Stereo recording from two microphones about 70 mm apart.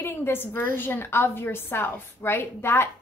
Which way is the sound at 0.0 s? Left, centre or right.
Left.